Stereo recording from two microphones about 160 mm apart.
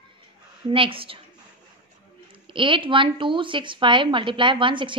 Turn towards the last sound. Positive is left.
turn(degrees=-30)  # may be behind; listen again after turning